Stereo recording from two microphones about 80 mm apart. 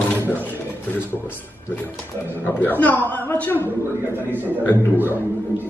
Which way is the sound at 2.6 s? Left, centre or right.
Left.